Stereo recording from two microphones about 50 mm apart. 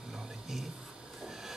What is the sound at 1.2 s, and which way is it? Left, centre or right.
Train, centre.